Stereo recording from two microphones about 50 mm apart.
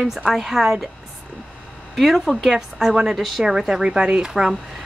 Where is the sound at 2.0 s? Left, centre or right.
Centre.